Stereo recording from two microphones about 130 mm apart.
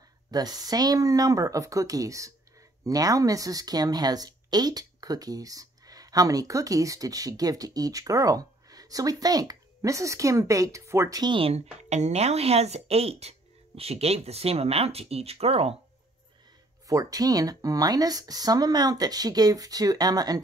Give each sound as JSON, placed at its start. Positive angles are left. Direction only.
{"t": 0.3, "sound": "a woman's voice", "side_deg": -30}
{"t": 11.3, "sound": "speech", "side_deg": -50}
{"t": 16.8, "sound": "a woman's voice", "side_deg": -25}